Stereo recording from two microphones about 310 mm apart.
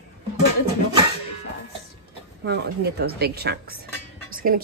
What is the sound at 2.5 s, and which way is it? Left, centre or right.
A woman's voice, right.